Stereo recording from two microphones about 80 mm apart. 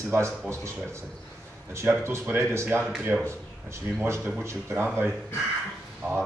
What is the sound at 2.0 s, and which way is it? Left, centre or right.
Speech, right.